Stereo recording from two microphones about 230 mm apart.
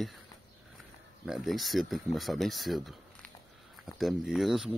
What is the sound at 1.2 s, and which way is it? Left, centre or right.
Speech, centre.